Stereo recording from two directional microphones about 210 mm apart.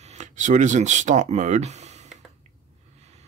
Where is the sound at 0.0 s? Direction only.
35° right (ahead or behind).